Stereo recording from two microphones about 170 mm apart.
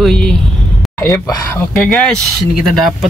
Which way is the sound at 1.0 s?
20° left (ahead or behind).